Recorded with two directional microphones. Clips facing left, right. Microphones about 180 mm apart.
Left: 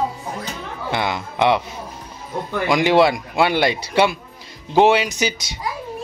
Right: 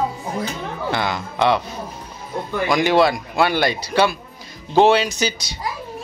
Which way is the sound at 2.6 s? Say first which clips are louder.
Left 1 dB; 25° left (ahead or behind).